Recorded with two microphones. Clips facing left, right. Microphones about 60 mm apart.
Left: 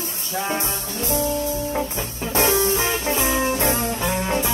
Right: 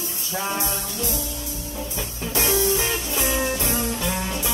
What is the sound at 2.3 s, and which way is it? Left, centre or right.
Music, left.